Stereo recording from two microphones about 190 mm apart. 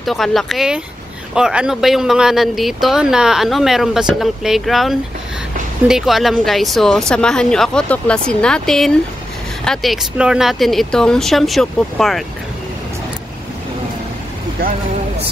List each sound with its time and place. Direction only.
0.0 s speech: centre (ahead or behind)